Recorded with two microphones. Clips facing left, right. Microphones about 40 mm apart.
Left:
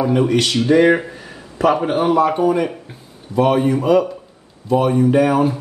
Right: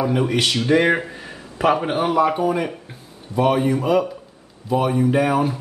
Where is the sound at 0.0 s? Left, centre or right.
Centre.